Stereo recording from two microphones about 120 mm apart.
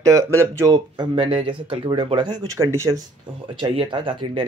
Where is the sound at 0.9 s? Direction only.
40° right (ahead or behind).